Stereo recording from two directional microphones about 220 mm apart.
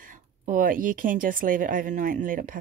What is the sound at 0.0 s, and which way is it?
Speech, 35° right (ahead or behind).